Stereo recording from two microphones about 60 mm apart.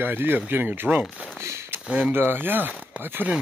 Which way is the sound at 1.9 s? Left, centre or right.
Right.